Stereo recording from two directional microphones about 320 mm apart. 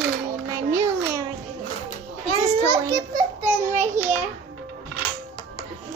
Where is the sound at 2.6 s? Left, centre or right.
Centre.